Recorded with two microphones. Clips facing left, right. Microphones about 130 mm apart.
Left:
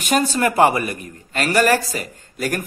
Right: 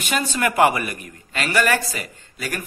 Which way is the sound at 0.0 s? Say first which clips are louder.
Left 4 dB; 40° left (ahead or behind).